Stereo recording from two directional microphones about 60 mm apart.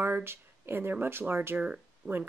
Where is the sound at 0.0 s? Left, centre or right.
Right.